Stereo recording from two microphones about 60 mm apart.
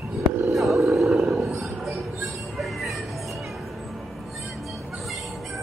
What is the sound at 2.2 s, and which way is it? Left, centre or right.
Music, centre.